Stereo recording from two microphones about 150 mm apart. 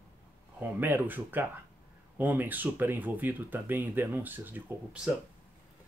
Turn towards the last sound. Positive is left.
turn(degrees=-10)  # may be behind; listen again after turning